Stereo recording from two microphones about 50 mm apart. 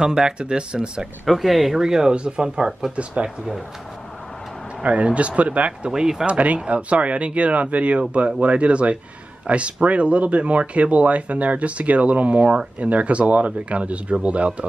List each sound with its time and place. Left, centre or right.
0.0 s speech: centre
1.2 s speech: centre; by 3.3 s right
4.8 s speech: right
5.7 s speech: centre
6.2 s speech: right